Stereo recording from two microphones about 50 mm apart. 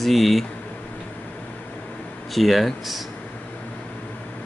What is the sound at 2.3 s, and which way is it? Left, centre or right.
Speech, centre.